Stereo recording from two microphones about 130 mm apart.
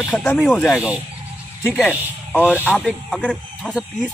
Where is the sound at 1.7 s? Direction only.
15° left (ahead or behind).